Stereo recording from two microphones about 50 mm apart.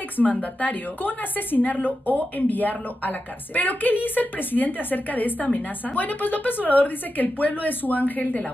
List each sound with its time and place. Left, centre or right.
0.2 s a woman's voice: left